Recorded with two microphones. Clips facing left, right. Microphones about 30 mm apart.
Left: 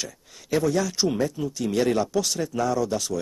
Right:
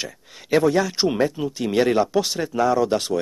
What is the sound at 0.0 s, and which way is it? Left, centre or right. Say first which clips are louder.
Speech: right 3 dB; right.